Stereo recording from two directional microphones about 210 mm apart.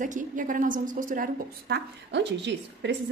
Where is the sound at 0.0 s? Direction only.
40° right (ahead or behind).